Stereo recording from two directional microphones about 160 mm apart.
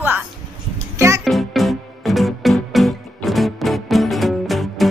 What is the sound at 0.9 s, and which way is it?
Music, 15° right (ahead or behind).